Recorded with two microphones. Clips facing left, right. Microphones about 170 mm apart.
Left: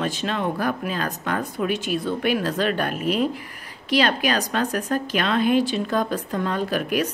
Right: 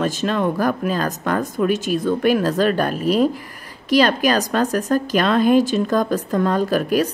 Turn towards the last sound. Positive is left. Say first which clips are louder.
# right 5 dB
turn(degrees=-40)  # may be behind; listen again after turning